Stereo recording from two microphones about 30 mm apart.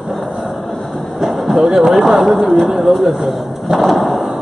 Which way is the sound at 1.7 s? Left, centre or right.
Centre.